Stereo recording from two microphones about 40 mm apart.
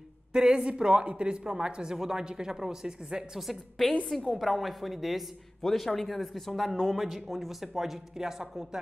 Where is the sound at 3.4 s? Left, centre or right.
Centre.